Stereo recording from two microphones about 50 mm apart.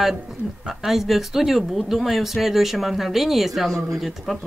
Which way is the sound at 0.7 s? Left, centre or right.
Centre.